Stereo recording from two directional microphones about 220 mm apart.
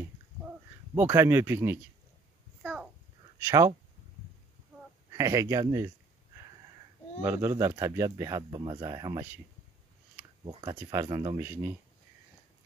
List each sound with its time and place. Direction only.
0.9 s speech: 10° right (ahead or behind)
2.6 s babbling: centre (ahead or behind)
3.3 s speech: 10° right (ahead or behind)
5.1 s speech: 15° right (ahead or behind)
7.2 s speech: 10° right (ahead or behind)
10.4 s speech: 20° right (ahead or behind)